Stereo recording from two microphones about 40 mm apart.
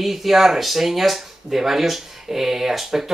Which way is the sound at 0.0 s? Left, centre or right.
Centre.